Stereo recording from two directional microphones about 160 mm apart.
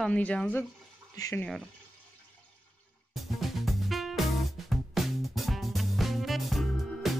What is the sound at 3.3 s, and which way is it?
Music, centre (ahead or behind).